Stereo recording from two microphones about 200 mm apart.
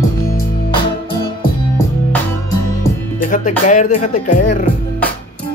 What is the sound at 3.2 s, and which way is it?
Speech, 40° left (ahead or behind).